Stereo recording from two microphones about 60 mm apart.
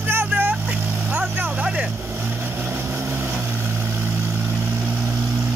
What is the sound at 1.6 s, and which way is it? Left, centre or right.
Vehicle, centre.